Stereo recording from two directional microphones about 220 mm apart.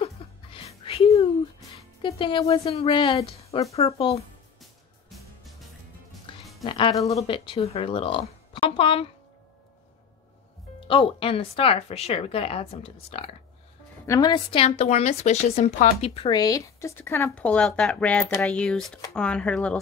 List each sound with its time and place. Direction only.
0.0 s music: 25° left (ahead or behind)
2.0 s speech: 25° left (ahead or behind)
6.3 s music: 25° left (ahead or behind)
6.6 s speech: 20° left (ahead or behind)
10.8 s speech: 25° left (ahead or behind); by 19.8 s 5° left (ahead or behind)